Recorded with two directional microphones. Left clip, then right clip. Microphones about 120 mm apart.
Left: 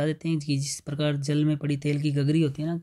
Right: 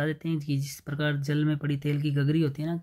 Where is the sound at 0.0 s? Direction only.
35° left (ahead or behind).